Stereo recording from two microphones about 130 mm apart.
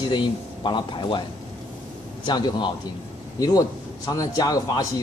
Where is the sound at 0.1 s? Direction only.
35° left (ahead or behind).